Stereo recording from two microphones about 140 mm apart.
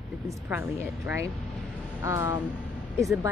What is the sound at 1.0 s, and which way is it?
Speech, 20° right (ahead or behind).